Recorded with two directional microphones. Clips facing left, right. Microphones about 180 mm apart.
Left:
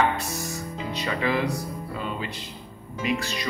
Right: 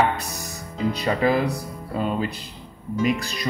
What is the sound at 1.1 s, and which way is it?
Speech, 40° right (ahead or behind).